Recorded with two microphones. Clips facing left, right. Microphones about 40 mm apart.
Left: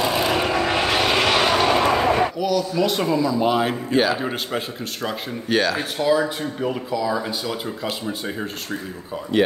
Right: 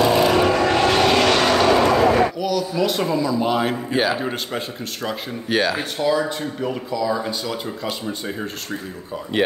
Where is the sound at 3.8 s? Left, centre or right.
Centre.